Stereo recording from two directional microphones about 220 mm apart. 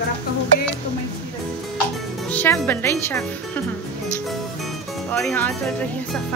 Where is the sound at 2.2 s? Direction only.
10° left (ahead or behind).